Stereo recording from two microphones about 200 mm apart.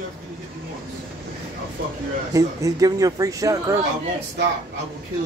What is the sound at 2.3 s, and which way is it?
Speech, 15° right (ahead or behind).